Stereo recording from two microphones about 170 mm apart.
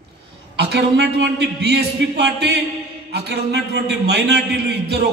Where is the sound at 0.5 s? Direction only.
80° right.